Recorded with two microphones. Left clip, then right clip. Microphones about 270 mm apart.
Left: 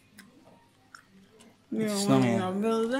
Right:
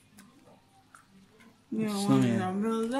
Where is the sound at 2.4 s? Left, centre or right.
Centre.